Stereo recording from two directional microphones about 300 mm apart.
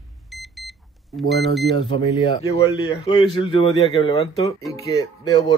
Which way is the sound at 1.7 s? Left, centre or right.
Centre.